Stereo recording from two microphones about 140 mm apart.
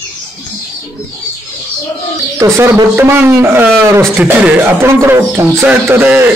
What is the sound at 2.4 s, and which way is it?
A man's voice, 20° right (ahead or behind).